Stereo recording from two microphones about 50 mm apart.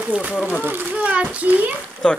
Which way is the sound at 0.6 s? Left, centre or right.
Right.